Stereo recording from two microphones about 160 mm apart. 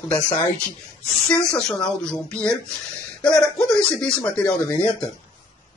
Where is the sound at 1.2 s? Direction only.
5° left (ahead or behind).